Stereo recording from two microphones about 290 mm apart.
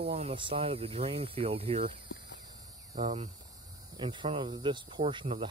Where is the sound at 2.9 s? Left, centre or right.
Right.